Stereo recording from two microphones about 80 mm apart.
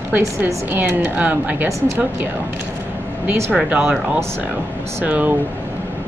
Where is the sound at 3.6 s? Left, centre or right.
Centre.